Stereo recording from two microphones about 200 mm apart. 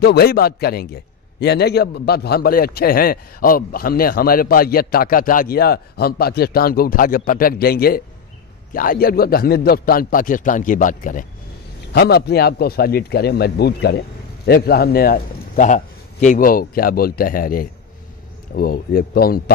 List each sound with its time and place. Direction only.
0.0 s a man's voice: 55° left (ahead or behind)
11.9 s a man's voice: 50° left (ahead or behind)